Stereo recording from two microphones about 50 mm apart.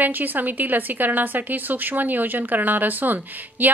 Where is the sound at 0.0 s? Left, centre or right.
Right.